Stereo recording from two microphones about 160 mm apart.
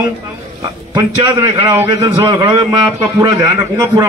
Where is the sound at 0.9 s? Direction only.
30° right (ahead or behind).